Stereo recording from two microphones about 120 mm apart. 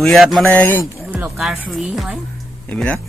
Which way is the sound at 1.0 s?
10° right (ahead or behind).